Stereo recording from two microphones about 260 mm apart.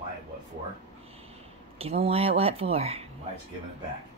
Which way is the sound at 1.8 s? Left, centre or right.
Right.